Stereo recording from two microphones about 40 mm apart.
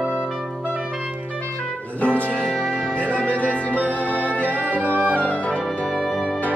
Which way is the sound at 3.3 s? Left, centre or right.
Left.